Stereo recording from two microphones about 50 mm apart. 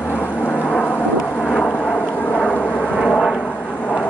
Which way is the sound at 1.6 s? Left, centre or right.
Left.